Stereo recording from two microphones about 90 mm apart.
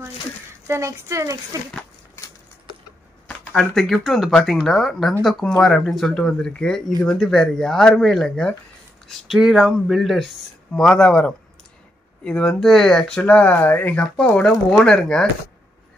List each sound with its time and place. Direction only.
0.7 s speech: 35° right (ahead or behind)
2.2 s a sound: 30° left (ahead or behind)
3.5 s speech: 5° left (ahead or behind)
10.7 s speech: 10° left (ahead or behind)
13.2 s speech: 15° left (ahead or behind)
14.3 s speech: 5° left (ahead or behind)